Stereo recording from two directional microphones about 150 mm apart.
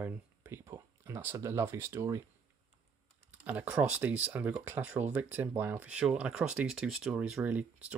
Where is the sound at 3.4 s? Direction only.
10° right (ahead or behind).